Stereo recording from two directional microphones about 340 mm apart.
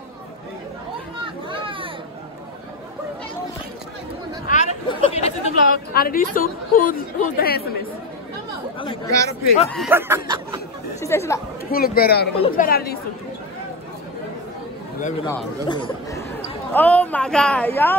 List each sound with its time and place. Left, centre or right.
1.2 s a sound: centre
4.5 s a woman's voice: centre
8.7 s speech: centre
9.8 s speech: centre
11.0 s speech: centre
11.7 s a man's voice: left
15.2 s speech: centre